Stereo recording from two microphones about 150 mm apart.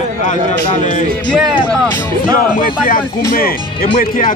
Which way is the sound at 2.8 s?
70° left (ahead or behind).